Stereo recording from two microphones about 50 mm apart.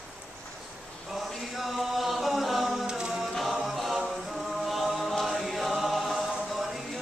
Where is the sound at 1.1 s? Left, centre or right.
Centre.